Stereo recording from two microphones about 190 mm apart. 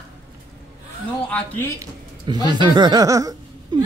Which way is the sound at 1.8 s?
20° right (ahead or behind).